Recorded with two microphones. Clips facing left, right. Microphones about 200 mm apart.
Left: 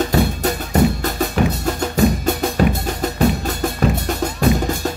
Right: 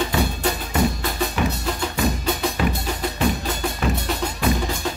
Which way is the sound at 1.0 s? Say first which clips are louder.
Left 4 dB; 45° left (ahead or behind).